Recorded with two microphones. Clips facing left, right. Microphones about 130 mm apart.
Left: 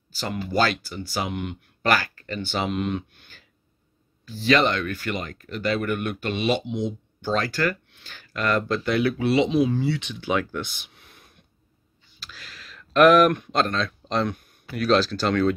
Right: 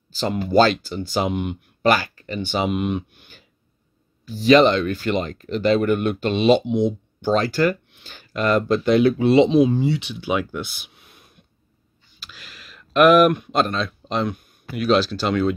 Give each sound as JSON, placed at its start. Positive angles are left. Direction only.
{"t": 0.1, "sound": "speech", "side_deg": -25}